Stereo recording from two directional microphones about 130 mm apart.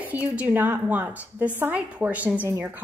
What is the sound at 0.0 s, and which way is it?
A woman's voice, 10° right (ahead or behind).